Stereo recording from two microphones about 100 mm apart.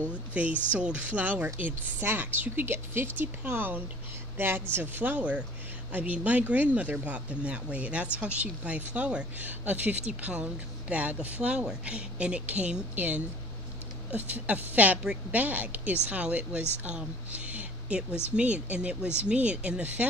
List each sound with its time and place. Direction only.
0.3 s a woman's voice: 15° right (ahead or behind)